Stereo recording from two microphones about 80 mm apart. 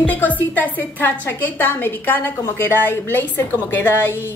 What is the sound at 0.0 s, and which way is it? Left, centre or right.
A woman's voice, left.